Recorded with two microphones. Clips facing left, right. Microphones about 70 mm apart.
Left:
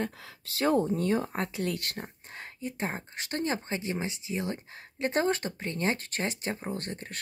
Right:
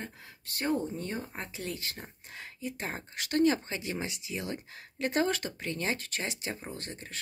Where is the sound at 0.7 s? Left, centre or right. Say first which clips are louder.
Left 6 dB; left.